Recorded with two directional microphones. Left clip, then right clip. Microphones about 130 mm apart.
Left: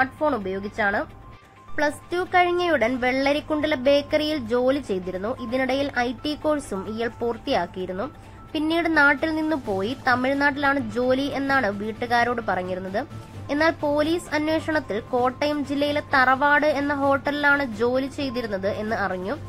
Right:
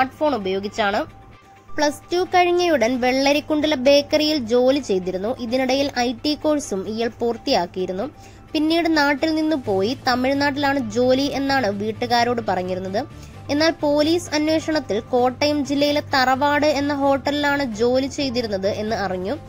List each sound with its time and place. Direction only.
0.0 s a woman's voice: 25° right (ahead or behind)